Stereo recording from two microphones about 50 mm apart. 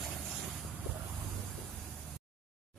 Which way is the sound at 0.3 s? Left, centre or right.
Centre.